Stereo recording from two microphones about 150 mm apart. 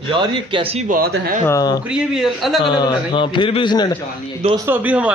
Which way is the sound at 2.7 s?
30° left (ahead or behind).